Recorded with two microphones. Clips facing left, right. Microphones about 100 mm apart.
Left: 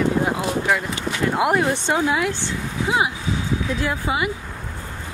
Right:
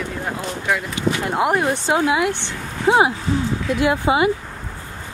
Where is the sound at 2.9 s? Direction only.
30° right (ahead or behind).